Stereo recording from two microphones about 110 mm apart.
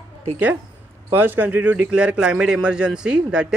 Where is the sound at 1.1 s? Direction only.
20° right (ahead or behind).